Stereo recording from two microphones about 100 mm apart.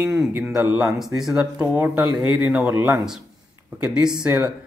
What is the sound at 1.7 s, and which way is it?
Speech, 15° right (ahead or behind).